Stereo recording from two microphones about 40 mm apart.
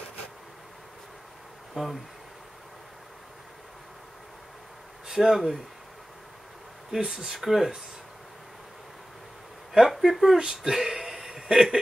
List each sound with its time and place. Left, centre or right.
1.8 s speech: centre
5.1 s speech: centre
6.9 s speech: centre
9.7 s speech: centre
10.3 s speech: centre